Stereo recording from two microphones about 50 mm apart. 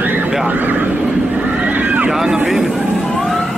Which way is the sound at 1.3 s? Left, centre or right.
Right.